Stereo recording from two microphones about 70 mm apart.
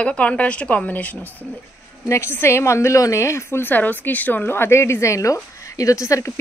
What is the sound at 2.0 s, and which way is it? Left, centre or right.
A woman's voice, left.